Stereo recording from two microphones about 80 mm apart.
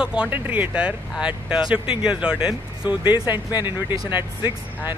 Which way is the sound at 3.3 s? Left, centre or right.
Left.